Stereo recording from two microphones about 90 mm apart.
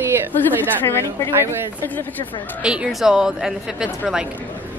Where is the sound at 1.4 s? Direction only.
25° right (ahead or behind).